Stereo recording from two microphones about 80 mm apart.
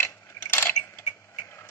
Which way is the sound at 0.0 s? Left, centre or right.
Left.